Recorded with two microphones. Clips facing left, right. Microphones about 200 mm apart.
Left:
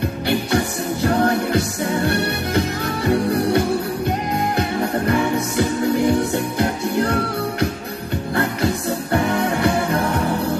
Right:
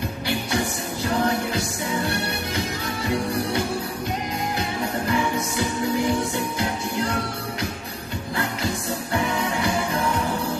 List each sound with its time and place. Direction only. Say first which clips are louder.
1.0 s music: left 5 dB; 60° left (ahead or behind)
4.6 s music: left 6 dB; 60° left (ahead or behind)
9.1 s music: left 5 dB; 60° left (ahead or behind)